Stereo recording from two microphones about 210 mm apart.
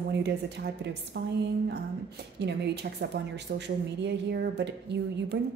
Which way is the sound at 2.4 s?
55° right (ahead or behind).